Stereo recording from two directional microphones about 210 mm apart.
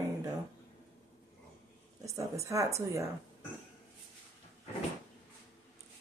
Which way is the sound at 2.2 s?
15° right (ahead or behind).